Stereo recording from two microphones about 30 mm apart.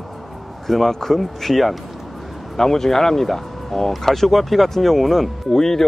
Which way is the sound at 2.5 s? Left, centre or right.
Centre.